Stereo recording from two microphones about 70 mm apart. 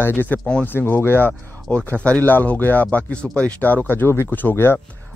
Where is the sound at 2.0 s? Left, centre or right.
Centre.